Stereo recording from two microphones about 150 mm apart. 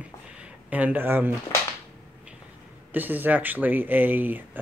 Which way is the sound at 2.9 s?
10° right (ahead or behind).